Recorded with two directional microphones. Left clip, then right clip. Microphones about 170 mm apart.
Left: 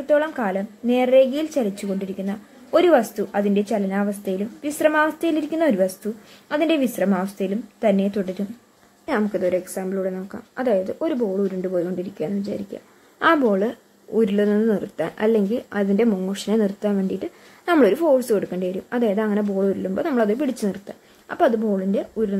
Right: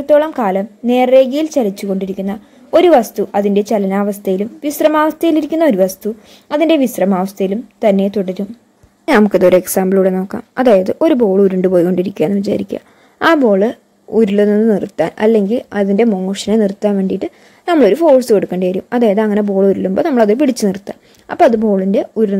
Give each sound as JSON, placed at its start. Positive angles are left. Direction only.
{"t": 0.0, "sound": "speech", "side_deg": -35}
{"t": 9.0, "sound": "a woman's voice", "side_deg": -50}
{"t": 13.3, "sound": "speech", "side_deg": -30}